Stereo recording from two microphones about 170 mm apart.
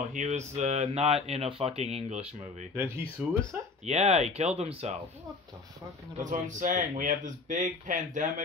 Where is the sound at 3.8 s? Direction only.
40° right (ahead or behind).